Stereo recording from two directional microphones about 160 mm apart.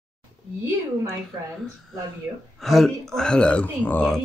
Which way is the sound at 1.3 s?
20° right (ahead or behind).